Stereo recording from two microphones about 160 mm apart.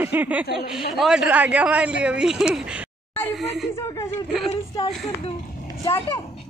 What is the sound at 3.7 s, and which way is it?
Speech, 15° left (ahead or behind).